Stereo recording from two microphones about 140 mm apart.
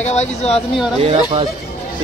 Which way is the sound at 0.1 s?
50° left (ahead or behind).